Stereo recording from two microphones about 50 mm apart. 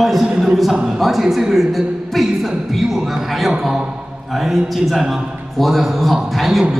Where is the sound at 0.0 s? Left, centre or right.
Centre.